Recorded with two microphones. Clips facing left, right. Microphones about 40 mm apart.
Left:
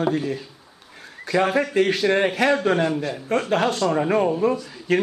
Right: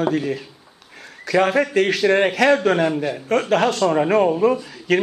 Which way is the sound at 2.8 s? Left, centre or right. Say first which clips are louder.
Right 3 dB; centre.